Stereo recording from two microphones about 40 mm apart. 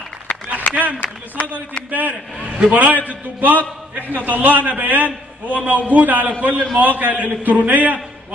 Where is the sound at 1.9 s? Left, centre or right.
Right.